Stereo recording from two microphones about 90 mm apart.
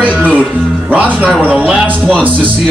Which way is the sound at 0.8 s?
15° right (ahead or behind).